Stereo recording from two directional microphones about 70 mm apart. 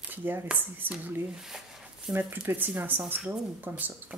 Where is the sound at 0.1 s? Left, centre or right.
Right.